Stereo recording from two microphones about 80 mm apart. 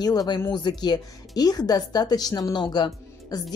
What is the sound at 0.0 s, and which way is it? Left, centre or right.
Speech, left.